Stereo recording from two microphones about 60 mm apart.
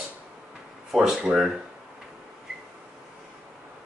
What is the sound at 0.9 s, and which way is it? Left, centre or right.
Speech, centre.